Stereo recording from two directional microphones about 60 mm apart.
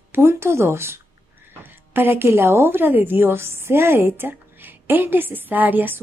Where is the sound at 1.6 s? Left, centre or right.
Right.